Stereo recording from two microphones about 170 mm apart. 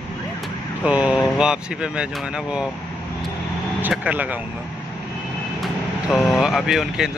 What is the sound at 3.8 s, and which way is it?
Speech, 10° right (ahead or behind).